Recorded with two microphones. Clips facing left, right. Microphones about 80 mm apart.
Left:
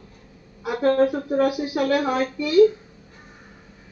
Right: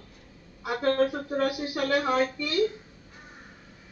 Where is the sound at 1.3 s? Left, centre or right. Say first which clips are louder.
Left 6 dB; centre.